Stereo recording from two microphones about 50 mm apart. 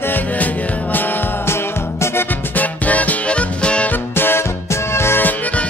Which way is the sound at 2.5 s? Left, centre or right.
Left.